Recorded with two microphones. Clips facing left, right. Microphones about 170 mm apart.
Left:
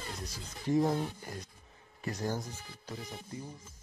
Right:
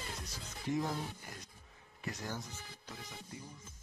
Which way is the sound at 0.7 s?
35° left (ahead or behind).